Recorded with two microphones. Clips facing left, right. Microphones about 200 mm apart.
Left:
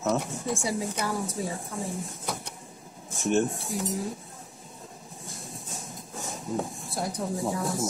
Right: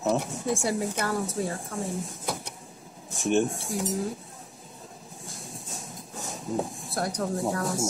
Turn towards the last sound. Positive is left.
turn(degrees=0)  # may be behind; listen again after turning